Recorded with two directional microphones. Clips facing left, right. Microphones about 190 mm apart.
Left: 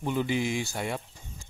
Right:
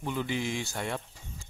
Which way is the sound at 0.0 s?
15° left (ahead or behind).